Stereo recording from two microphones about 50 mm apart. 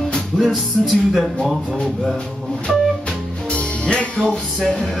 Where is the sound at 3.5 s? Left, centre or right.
Left.